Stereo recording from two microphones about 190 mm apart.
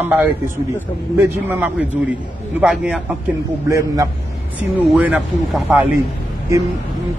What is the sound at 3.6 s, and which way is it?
A man's voice, 15° right (ahead or behind).